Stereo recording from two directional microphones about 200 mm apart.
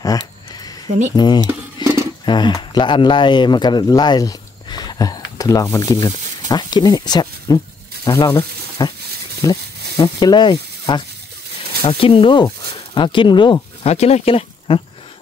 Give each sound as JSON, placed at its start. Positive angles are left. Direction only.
{"t": 0.8, "sound": "speech", "side_deg": -35}
{"t": 1.1, "sound": "speech", "side_deg": 20}
{"t": 1.8, "sound": "roaring cats", "side_deg": 20}
{"t": 2.2, "sound": "speech", "side_deg": 20}